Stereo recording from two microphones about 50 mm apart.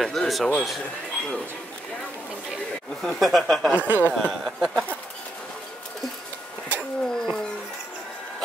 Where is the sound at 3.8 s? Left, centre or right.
Right.